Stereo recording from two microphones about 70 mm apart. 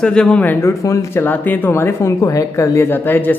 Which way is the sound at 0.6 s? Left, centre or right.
Left.